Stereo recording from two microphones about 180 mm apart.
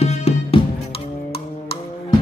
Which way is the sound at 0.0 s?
35° left (ahead or behind).